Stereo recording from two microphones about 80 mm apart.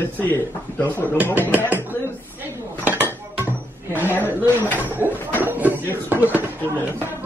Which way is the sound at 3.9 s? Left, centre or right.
Right.